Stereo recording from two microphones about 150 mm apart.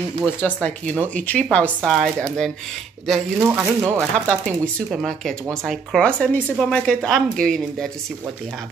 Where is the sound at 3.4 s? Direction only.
10° right (ahead or behind).